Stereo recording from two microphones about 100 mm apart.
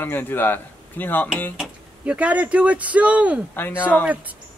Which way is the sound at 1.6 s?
10° right (ahead or behind).